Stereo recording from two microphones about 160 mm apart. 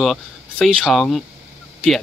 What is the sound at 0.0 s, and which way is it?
Speech, centre (ahead or behind).